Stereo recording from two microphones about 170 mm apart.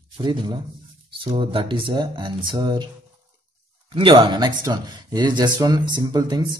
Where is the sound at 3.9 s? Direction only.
30° right (ahead or behind).